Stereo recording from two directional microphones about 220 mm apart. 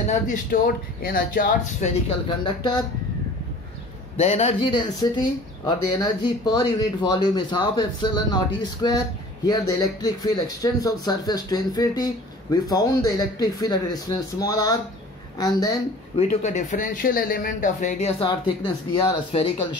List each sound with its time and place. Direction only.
0.1 s speech: 35° left (ahead or behind)
2.0 s speech: 20° left (ahead or behind)
4.2 s speech: 30° left (ahead or behind)
16.2 s speech: 30° left (ahead or behind)